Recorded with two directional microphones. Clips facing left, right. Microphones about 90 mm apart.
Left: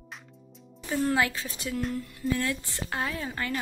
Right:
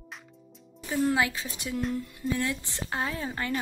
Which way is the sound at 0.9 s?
15° right (ahead or behind).